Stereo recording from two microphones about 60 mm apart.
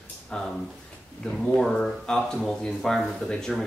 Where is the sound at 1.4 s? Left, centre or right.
Centre.